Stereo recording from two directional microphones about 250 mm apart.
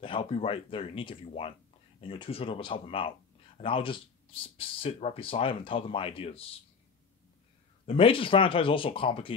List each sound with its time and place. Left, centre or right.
0.0 s speech: left
7.8 s speech: left